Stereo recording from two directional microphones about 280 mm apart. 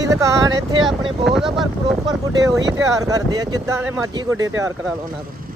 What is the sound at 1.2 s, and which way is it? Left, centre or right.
Speech, centre.